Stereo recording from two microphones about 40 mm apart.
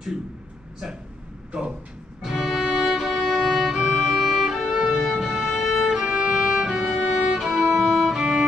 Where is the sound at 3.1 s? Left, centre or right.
Centre.